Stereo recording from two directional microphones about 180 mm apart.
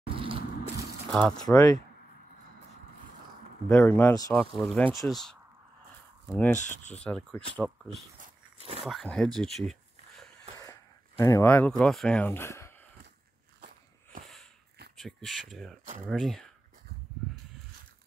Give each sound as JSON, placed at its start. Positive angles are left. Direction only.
{"t": 0.1, "sound": "vehicle", "side_deg": -30}
{"t": 1.1, "sound": "speech", "side_deg": 5}
{"t": 3.6, "sound": "speech", "side_deg": 5}
{"t": 6.6, "sound": "speech", "side_deg": 40}
{"t": 7.1, "sound": "speech", "side_deg": 5}
{"t": 8.5, "sound": "speech", "side_deg": -35}
{"t": 8.8, "sound": "speech", "side_deg": 0}
{"t": 10.6, "sound": "speech", "side_deg": 20}
{"t": 15.0, "sound": "speech", "side_deg": 0}